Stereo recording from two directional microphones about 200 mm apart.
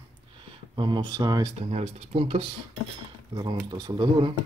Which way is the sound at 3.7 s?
20° right (ahead or behind).